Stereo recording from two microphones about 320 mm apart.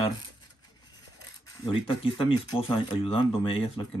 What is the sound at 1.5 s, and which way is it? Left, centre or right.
Speech, centre.